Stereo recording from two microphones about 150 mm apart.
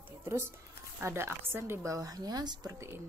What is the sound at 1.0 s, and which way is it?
Speech, 15° right (ahead or behind).